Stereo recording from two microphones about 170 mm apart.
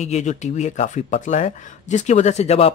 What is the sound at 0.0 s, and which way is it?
Speech, 45° left (ahead or behind).